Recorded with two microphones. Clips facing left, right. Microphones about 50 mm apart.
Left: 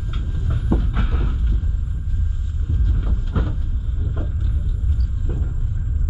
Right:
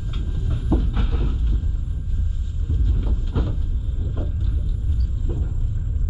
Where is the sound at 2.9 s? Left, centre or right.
Centre.